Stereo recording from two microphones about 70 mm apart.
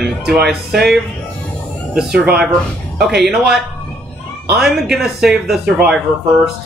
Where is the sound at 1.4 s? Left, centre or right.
Left.